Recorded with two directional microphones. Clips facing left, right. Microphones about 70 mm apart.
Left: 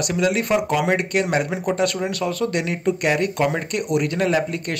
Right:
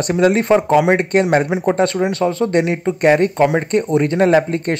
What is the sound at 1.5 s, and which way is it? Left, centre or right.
Speech, right.